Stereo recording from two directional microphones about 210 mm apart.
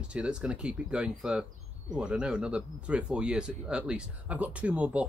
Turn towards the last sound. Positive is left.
turn(degrees=-5)  # may be behind; listen again after turning